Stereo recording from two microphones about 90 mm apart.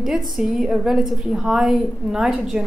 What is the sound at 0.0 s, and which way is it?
A woman's voice, 5° right (ahead or behind).